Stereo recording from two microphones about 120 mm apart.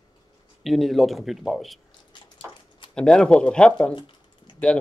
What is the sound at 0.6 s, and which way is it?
Speech, centre (ahead or behind).